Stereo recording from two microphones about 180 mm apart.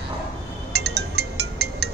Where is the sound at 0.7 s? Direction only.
65° right (ahead or behind).